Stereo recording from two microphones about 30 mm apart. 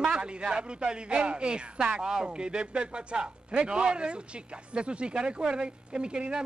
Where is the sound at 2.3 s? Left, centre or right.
Right.